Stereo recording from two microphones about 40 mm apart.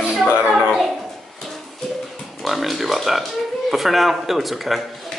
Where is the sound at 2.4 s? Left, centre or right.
Centre.